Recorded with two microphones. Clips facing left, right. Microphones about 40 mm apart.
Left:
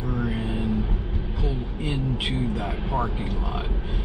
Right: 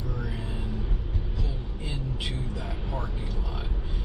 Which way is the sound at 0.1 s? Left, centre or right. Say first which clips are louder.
Left 8 dB; left.